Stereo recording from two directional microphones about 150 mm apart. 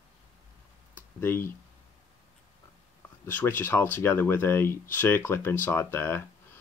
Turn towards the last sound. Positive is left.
turn(degrees=15)  # may be behind; listen again after turning